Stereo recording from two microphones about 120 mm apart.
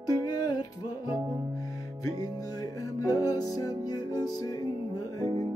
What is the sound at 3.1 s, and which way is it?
Music, 30° left (ahead or behind).